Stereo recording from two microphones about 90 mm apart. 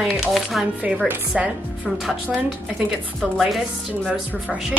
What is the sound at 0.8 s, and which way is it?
A woman's voice, 15° right (ahead or behind).